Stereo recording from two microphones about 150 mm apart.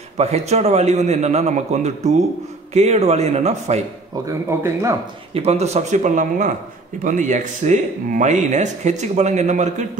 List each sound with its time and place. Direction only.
0.2 s speech: 45° right (ahead or behind)
4.3 s speech: 20° right (ahead or behind)
5.3 s speech: 45° right (ahead or behind)